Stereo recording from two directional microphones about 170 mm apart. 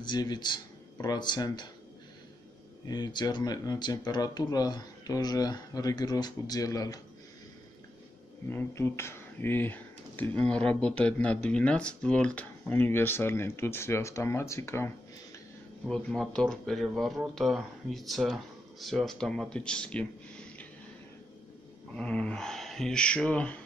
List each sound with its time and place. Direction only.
0.0 s speech: 25° left (ahead or behind)
2.9 s speech: 25° left (ahead or behind)
8.5 s speech: 15° left (ahead or behind)
15.9 s speech: 5° left (ahead or behind)
21.9 s speech: 5° left (ahead or behind)